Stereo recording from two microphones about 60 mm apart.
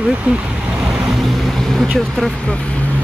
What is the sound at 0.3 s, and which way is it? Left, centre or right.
Speech, right.